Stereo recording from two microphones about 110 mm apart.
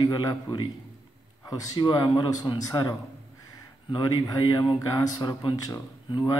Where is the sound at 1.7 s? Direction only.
40° left (ahead or behind).